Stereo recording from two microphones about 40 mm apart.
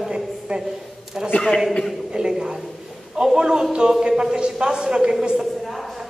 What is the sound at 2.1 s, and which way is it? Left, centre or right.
A man's voice, centre.